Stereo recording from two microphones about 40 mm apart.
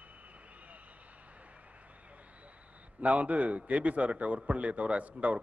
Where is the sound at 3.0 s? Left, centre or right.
Right.